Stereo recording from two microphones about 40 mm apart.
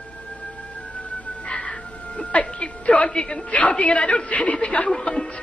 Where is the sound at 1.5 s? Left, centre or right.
Left.